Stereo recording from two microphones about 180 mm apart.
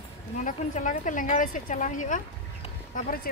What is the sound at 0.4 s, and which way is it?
Speech, 45° left (ahead or behind).